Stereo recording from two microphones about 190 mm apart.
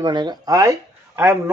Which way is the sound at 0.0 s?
20° right (ahead or behind).